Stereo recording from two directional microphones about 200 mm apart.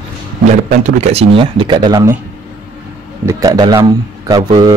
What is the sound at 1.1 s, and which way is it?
A man's voice, 25° right (ahead or behind).